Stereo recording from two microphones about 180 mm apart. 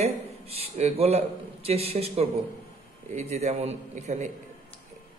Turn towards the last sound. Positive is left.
turn(degrees=-40)  # may be behind; listen again after turning